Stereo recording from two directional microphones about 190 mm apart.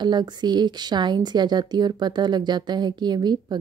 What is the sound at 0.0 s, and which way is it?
A woman's voice, 25° right (ahead or behind).